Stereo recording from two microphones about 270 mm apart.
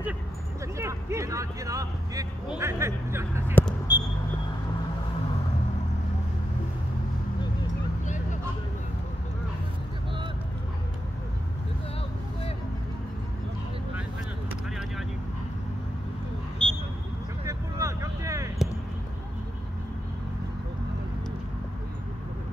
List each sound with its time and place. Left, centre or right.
0.7 s speech: centre
3.5 s basketball bounce: centre
16.6 s a sound: centre
17.5 s vehicle: centre